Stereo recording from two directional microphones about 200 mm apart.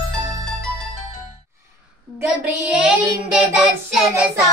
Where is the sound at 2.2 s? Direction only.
5° right (ahead or behind).